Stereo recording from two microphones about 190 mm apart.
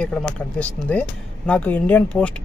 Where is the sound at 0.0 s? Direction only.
5° left (ahead or behind).